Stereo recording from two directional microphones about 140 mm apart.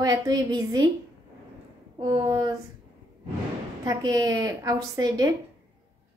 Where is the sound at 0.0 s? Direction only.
30° right (ahead or behind).